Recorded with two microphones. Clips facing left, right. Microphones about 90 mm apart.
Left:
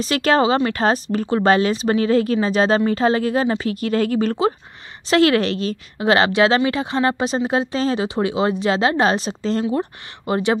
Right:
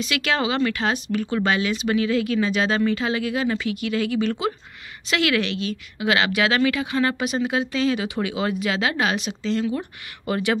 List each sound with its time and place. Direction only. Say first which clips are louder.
0.0 s a woman's voice: left 7 dB; 40° left (ahead or behind)